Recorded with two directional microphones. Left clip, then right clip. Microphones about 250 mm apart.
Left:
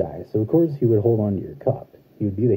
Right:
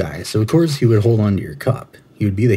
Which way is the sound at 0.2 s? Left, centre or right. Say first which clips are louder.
Right 3 dB; right.